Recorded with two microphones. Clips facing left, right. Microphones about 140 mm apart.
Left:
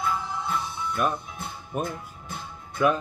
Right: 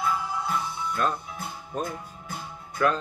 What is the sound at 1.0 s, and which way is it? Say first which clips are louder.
Music: left 1 dB; 15° left (ahead or behind).